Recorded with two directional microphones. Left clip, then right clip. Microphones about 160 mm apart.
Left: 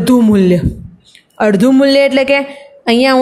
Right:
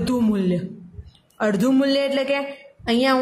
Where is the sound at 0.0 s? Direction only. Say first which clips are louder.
Left 12 dB; 35° left (ahead or behind).